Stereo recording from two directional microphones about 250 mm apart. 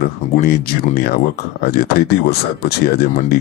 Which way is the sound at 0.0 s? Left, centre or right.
Left.